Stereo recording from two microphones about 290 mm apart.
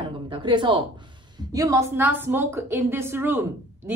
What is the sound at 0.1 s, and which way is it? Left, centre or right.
A woman's voice, centre.